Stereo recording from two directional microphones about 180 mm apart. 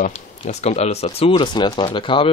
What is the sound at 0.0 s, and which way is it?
Speech, 40° left (ahead or behind).